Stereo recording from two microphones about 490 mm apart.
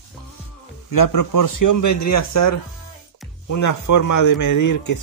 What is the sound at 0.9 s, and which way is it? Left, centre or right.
Speech, left.